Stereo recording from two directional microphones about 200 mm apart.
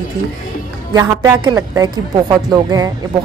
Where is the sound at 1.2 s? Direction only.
20° right (ahead or behind).